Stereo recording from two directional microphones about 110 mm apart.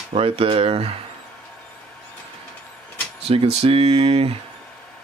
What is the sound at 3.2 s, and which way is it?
Speech, 65° right (ahead or behind).